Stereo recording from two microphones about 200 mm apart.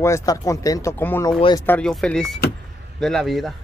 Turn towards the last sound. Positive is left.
turn(degrees=0)  # may be behind; listen again after turning